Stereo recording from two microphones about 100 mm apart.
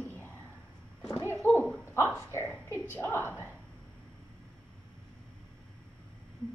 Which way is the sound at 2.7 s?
25° left (ahead or behind).